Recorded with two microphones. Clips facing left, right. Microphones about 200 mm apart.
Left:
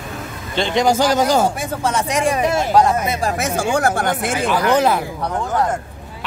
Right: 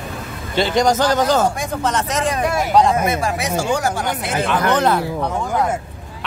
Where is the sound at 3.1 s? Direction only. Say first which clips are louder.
Even; 40° left (ahead or behind).